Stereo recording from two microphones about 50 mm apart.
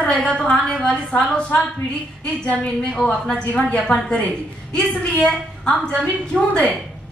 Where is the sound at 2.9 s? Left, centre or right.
Centre.